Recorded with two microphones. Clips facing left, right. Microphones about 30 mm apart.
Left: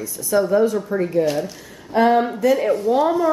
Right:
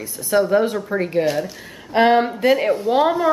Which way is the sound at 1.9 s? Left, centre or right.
Right.